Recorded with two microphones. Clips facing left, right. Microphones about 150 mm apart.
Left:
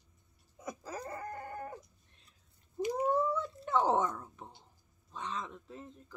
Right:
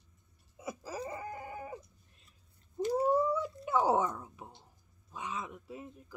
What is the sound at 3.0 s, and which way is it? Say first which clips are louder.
Cat: right 1 dB; 10° right (ahead or behind).